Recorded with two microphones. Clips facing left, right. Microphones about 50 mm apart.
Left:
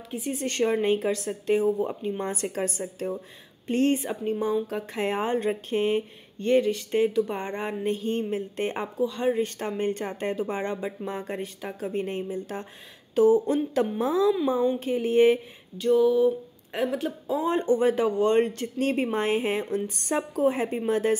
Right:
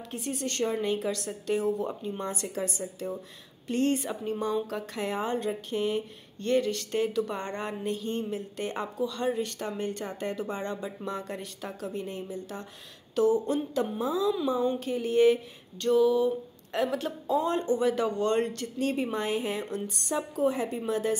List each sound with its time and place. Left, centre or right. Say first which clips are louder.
0.3 s speech: left 5 dB; left
3.6 s a woman's voice: left 3 dB; left; by 4.8 s centre
4.9 s speech: left 4 dB; left
7.8 s speech: left 5 dB; left
9.3 s speech: left 4 dB; left
15.8 s a woman's voice: left 3 dB; centre
17.5 s speech: left 8 dB; left